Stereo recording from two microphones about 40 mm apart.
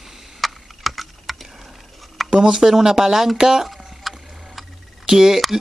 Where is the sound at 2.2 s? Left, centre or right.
Right.